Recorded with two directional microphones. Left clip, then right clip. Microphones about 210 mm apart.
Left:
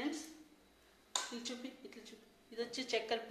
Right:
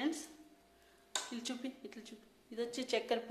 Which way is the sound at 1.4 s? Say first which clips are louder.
Right 2 dB; 50° right (ahead or behind).